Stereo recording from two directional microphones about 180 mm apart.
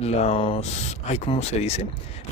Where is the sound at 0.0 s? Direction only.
35° left (ahead or behind).